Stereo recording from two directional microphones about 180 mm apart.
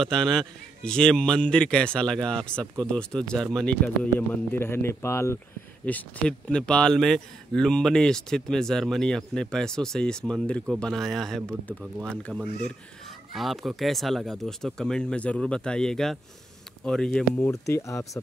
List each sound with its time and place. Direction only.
0.0 s speech: 5° left (ahead or behind)
17.5 s speech: 15° left (ahead or behind)